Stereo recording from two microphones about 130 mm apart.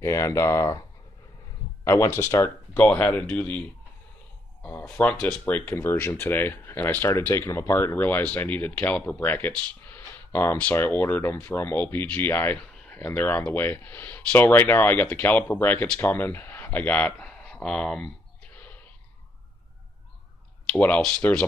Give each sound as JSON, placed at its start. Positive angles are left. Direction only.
{"t": 0.0, "sound": "speech", "side_deg": 25}
{"t": 1.9, "sound": "speech", "side_deg": 25}
{"t": 4.8, "sound": "speech", "side_deg": 5}
{"t": 20.7, "sound": "speech", "side_deg": 10}